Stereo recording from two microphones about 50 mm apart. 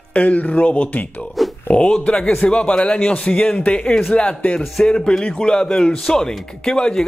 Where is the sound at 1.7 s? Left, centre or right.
Left.